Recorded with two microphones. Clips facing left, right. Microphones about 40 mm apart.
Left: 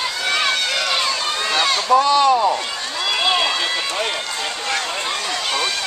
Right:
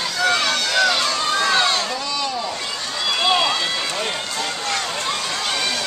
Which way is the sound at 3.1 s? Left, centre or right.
Centre.